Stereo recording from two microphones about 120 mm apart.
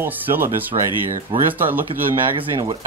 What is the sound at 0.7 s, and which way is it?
Speech, 50° right (ahead or behind).